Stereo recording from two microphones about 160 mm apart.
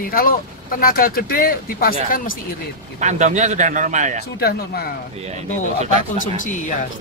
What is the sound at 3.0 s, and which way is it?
Speech, 50° right (ahead or behind).